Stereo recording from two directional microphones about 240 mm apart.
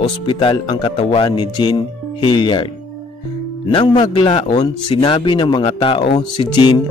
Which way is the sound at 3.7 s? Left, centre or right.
Centre.